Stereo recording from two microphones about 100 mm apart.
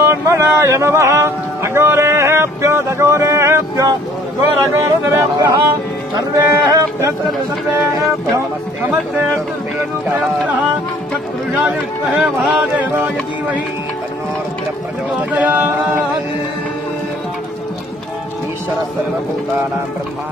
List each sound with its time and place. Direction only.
0.0 s speech: 30° right (ahead or behind)
12.4 s speech: 10° right (ahead or behind)
15.3 s speech: 20° right (ahead or behind)